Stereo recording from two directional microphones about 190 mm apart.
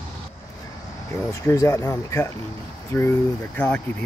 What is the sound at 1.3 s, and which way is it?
Speech, 15° left (ahead or behind).